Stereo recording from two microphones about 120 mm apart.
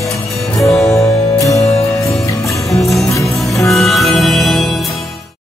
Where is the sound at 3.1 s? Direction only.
25° left (ahead or behind).